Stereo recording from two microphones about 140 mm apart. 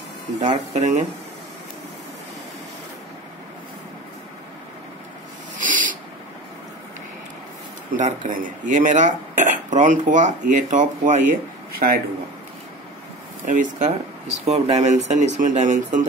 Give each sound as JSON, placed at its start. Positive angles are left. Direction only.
{"t": 0.4, "sound": "speech", "side_deg": -60}
{"t": 5.6, "sound": "owl", "side_deg": -70}
{"t": 7.9, "sound": "speech", "side_deg": -70}
{"t": 11.8, "sound": "a man's voice", "side_deg": -80}
{"t": 13.5, "sound": "speech", "side_deg": -65}